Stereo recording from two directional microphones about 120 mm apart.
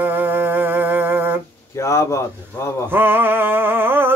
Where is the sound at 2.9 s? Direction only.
15° right (ahead or behind).